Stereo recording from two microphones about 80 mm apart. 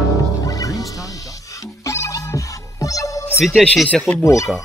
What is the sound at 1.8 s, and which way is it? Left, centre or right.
Music, left.